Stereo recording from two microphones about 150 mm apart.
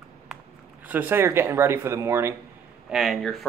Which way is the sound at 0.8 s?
10° right (ahead or behind).